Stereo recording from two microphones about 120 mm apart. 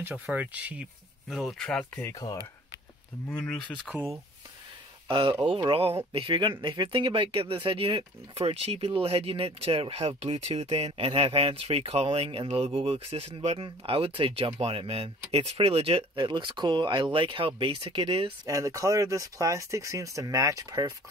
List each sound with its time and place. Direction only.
0.0 s speech: 15° right (ahead or behind)
1.3 s speech: centre (ahead or behind)
2.0 s speech: 30° left (ahead or behind)
3.3 s speech: 5° left (ahead or behind)
5.0 s speech: 40° right (ahead or behind)
16.3 s speech: 40° right (ahead or behind)
18.5 s speech: 25° right (ahead or behind)